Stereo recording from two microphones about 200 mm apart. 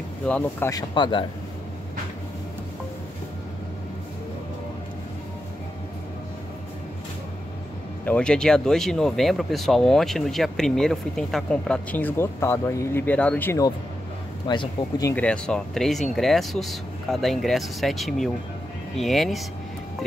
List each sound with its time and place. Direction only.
0.3 s speech: 15° left (ahead or behind)
8.0 s speech: 5° left (ahead or behind)